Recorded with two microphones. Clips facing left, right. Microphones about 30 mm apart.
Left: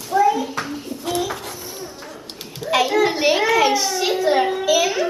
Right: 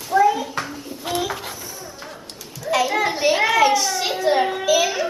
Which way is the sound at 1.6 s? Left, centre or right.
Left.